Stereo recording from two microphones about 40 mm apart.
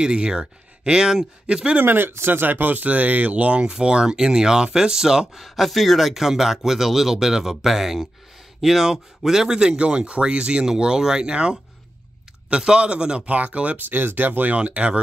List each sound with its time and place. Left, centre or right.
0.0 s speech: centre
1.8 s speech: right
3.7 s speech: centre
5.4 s speech: centre; by 13.7 s right
13.7 s speech: right
14.6 s speech: right